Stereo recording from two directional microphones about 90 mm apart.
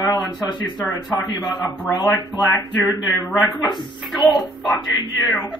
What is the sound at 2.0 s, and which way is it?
Speech, 45° left (ahead or behind).